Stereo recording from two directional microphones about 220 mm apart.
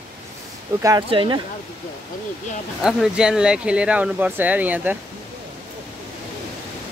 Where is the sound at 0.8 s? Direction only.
20° right (ahead or behind).